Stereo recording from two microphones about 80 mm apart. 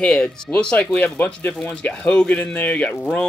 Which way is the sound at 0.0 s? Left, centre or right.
Centre.